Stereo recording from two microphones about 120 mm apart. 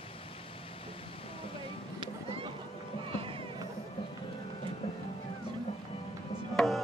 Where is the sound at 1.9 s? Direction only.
45° right (ahead or behind).